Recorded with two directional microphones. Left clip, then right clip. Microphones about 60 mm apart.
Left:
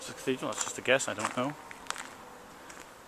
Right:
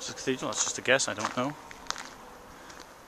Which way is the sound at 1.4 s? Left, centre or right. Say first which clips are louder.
Right 2 dB; centre.